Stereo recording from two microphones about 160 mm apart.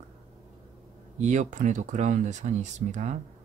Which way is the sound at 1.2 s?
50° right (ahead or behind).